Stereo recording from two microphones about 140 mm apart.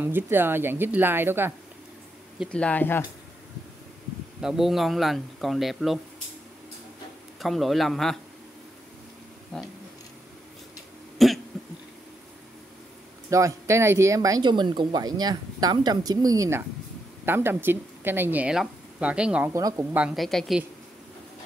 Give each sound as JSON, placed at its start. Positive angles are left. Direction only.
{"t": 0.0, "sound": "speech", "side_deg": -15}
{"t": 2.5, "sound": "speech", "side_deg": 10}
{"t": 4.4, "sound": "speech", "side_deg": -5}
{"t": 7.3, "sound": "speech", "side_deg": 0}
{"t": 9.5, "sound": "speech", "side_deg": 5}
{"t": 11.1, "sound": "cough", "side_deg": 0}
{"t": 13.3, "sound": "speech", "side_deg": -20}
{"t": 19.5, "sound": "speech", "side_deg": -20}
{"t": 20.0, "sound": "speech", "side_deg": 0}